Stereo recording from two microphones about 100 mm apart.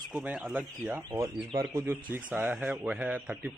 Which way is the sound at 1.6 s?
30° right (ahead or behind).